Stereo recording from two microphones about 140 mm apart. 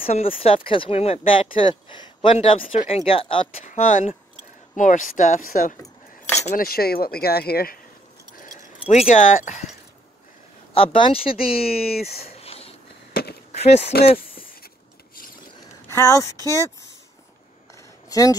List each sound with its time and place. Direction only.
0.0 s speech: 45° left (ahead or behind)
3.6 s speech: 65° left (ahead or behind); by 5.8 s 80° left
5.8 s cutlery: 20° left (ahead or behind)
6.4 s speech: 80° left
8.8 s speech: 50° left (ahead or behind)
10.7 s speech: 40° left (ahead or behind)
11.6 s speech: 90° left
12.4 s a sound: 45° left (ahead or behind)
13.9 s a sound: 90° left
15.9 s speech: 20° left (ahead or behind)
17.7 s a sound: 25° left (ahead or behind)